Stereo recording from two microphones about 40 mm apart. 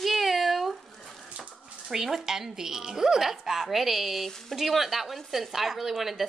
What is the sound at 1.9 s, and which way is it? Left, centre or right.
Speech, centre.